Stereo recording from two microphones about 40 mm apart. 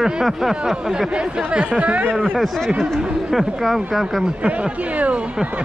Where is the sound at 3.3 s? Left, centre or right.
Centre.